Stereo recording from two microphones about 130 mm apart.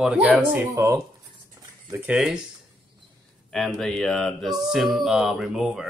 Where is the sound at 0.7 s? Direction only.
25° right (ahead or behind).